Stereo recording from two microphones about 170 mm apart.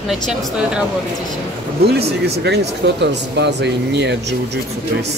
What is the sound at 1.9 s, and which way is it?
Speech, 75° right (ahead or behind).